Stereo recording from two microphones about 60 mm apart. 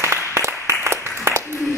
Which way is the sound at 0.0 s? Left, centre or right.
Right.